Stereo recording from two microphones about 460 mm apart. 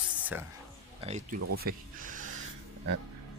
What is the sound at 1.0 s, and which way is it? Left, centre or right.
Speech, centre.